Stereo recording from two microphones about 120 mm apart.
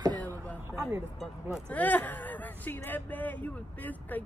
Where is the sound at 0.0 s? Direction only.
35° right (ahead or behind).